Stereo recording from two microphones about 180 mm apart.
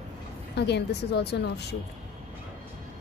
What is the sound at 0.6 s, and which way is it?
A woman's voice, 70° left (ahead or behind).